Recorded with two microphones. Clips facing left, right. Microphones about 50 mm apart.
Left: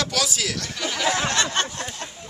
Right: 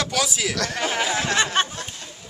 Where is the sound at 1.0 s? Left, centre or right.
Left.